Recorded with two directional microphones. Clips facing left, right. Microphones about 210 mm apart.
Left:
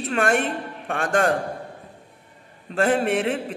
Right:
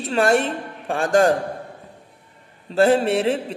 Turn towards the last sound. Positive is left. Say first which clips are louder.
# right 3 dB
turn(degrees=-30)  # may be behind; listen again after turning